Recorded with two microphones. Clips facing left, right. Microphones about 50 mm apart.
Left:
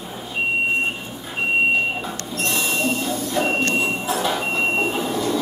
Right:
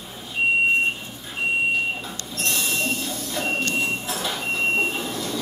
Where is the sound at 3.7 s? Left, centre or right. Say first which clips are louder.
Left 4 dB; centre.